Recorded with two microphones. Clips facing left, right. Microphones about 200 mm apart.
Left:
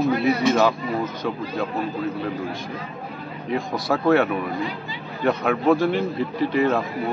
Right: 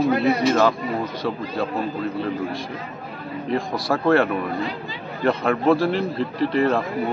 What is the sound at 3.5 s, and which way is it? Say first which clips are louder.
A man's voice: even; centre (ahead or behind).